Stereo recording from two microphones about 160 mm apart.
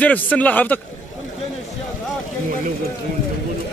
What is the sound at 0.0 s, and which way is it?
Speech, 10° left (ahead or behind).